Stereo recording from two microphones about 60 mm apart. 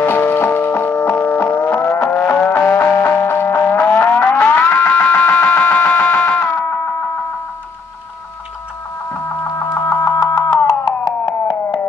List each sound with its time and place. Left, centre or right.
0.0 s music: left
9.1 s a sound: left
9.8 s music: left